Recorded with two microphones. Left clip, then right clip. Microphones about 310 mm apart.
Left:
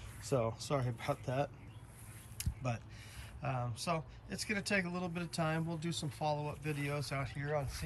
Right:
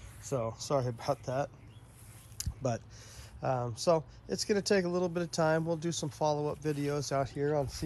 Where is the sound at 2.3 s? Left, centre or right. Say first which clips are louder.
Right 7 dB; centre.